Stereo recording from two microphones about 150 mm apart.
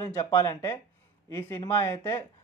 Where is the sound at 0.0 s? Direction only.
25° left (ahead or behind).